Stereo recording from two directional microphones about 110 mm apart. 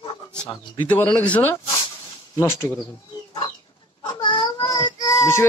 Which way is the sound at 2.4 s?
25° left (ahead or behind).